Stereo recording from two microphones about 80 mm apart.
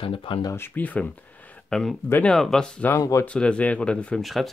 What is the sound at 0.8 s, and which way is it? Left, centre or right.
Speech, left.